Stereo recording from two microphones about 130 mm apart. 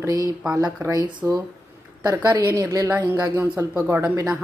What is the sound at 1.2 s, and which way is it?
Speech, 20° right (ahead or behind).